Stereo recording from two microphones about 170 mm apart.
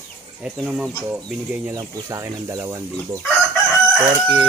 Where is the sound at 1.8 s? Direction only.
20° right (ahead or behind).